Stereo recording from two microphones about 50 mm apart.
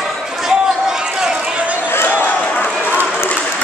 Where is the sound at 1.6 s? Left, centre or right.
Right.